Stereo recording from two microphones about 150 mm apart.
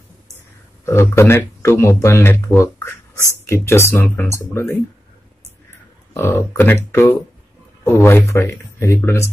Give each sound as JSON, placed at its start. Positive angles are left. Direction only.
{"t": 0.8, "sound": "speech", "side_deg": 15}
{"t": 6.1, "sound": "speech", "side_deg": 15}